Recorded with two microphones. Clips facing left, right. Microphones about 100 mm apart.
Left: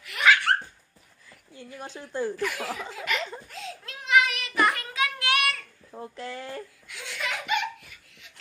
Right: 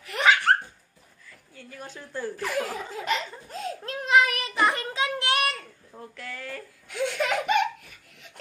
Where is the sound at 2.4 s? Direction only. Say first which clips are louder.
Right 1 dB; 40° right (ahead or behind).